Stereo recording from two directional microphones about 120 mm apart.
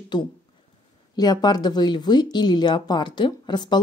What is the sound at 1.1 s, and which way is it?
Speech, 35° left (ahead or behind).